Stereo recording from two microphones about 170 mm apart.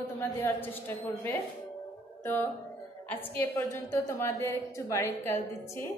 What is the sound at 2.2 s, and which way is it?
A woman's voice, 15° left (ahead or behind).